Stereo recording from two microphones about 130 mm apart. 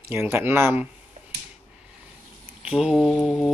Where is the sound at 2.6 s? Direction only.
5° right (ahead or behind).